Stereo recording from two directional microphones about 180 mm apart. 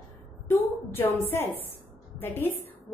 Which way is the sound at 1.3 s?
15° left (ahead or behind).